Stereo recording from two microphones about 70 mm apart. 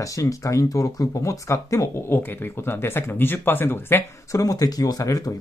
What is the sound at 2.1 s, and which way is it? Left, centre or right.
Speech, left.